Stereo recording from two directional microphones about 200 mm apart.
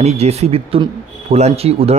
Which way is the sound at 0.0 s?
30° right (ahead or behind).